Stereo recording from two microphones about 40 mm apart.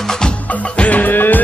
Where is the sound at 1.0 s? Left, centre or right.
Left.